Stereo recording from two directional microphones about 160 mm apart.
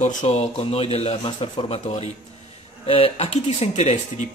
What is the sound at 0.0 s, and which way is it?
Speech, 45° left (ahead or behind).